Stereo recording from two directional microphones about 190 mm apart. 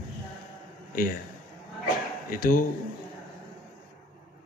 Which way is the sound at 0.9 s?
50° left (ahead or behind).